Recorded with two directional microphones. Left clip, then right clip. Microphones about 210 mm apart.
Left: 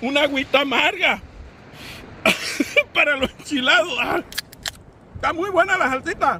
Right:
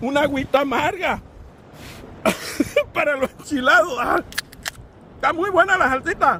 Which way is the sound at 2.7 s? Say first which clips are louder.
Left 2 dB; 5° right (ahead or behind).